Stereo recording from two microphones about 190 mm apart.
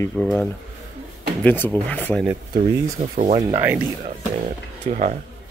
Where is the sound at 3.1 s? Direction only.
40° right (ahead or behind).